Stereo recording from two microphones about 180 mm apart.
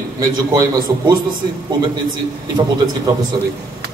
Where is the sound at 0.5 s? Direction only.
20° right (ahead or behind).